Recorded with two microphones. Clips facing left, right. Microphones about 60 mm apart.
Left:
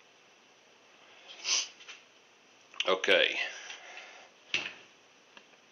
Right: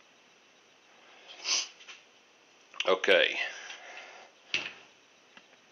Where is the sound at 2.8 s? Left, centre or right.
Right.